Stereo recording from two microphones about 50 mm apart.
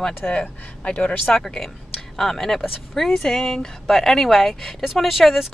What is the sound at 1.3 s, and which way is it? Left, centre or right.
Speech, centre.